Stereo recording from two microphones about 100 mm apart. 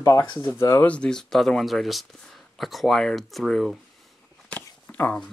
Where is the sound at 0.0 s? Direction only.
40° left (ahead or behind).